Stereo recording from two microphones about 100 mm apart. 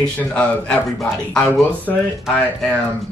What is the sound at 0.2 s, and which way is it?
Speech, 10° left (ahead or behind).